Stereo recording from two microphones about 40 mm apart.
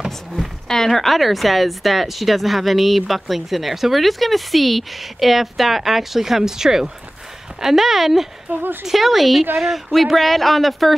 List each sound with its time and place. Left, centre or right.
0.7 s speech: centre
8.5 s a woman's voice: right
8.8 s speech: centre